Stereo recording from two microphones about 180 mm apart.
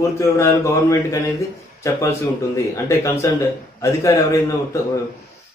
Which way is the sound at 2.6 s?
15° left (ahead or behind).